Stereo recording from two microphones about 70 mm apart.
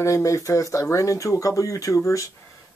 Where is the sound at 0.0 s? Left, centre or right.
Left.